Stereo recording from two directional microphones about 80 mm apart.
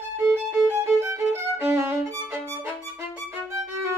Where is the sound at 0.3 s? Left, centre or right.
Right.